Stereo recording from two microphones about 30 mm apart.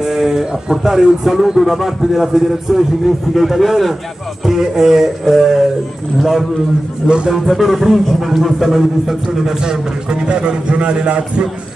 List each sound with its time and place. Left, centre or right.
0.0 s a sound: centre
0.5 s speech: right
1.0 s a man's voice: centre
4.5 s speech: centre
7.0 s speech: centre
7.4 s a man's voice: centre
9.0 s a man's voice: centre; by 11.4 s right